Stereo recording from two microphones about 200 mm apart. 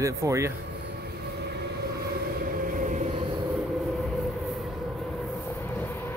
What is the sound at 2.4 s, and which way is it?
Train, 45° right (ahead or behind).